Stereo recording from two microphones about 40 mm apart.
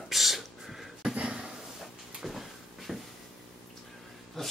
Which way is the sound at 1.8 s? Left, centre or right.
Centre.